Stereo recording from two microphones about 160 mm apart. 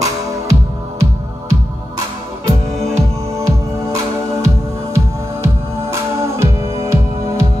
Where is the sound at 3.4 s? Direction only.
20° right (ahead or behind).